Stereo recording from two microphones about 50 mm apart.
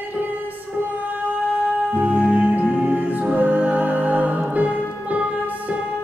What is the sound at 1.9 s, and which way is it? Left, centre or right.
Music, right.